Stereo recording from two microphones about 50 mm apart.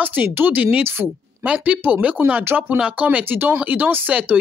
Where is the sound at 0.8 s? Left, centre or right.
Right.